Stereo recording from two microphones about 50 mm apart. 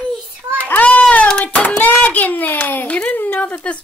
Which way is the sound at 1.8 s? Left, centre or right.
Left.